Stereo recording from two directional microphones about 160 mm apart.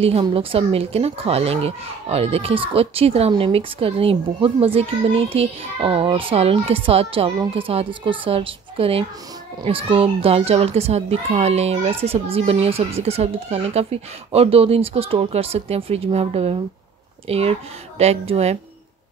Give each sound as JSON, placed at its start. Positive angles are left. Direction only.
{"t": 0.2, "sound": "speech", "side_deg": -35}